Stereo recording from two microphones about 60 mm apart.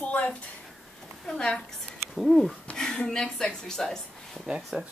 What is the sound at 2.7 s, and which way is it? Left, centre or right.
Speech, centre.